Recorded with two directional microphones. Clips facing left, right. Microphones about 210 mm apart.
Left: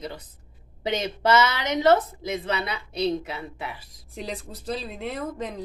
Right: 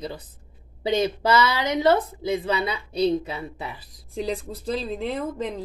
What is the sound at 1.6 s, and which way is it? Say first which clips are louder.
Speech: even; 30° right (ahead or behind).